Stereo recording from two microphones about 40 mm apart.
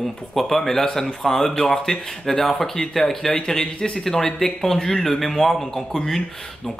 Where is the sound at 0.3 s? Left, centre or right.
Centre.